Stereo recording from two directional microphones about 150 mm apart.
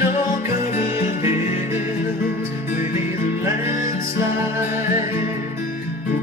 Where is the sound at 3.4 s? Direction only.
20° right (ahead or behind).